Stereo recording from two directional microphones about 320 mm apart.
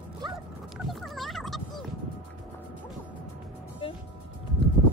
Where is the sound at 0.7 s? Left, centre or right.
Centre.